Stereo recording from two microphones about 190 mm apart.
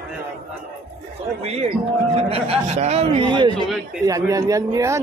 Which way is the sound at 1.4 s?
35° right (ahead or behind).